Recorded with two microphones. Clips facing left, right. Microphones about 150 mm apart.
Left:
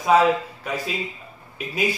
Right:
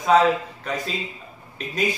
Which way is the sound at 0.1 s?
5° left (ahead or behind).